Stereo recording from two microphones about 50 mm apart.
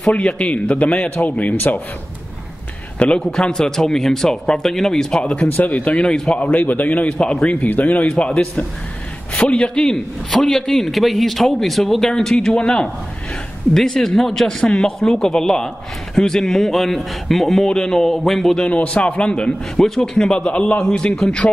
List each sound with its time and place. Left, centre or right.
0.1 s a man's voice: left
3.2 s speech: centre
5.2 s a man's voice: left
7.1 s a man's voice: centre
7.6 s a man's voice: left
8.2 s a man's voice: left
9.8 s a man's voice: centre
17.6 s speech: centre
18.6 s a man's voice: left